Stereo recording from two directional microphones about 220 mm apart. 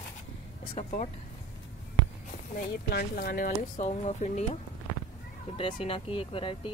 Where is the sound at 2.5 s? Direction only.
45° left (ahead or behind).